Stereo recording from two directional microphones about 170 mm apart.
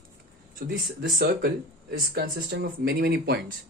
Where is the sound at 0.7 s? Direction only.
60° right (ahead or behind).